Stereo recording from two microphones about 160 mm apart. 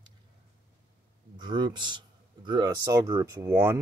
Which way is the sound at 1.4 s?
30° right (ahead or behind).